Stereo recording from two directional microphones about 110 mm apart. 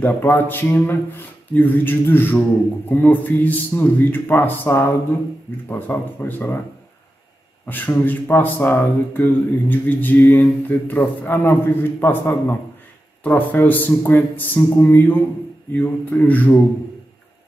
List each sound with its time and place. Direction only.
0.0 s speech: 20° left (ahead or behind)
7.6 s speech: 15° left (ahead or behind)